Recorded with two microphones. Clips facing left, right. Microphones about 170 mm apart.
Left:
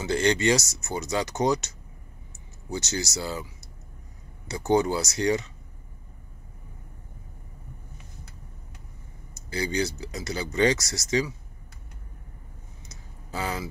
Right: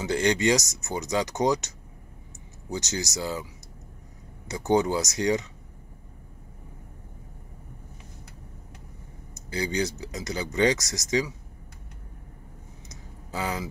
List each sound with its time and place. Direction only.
0.0 s speech: 15° right (ahead or behind)
2.7 s speech: 15° right (ahead or behind)
4.5 s speech: 15° right (ahead or behind)
9.3 s speech: 15° right (ahead or behind)
12.8 s a sound: 15° right (ahead or behind)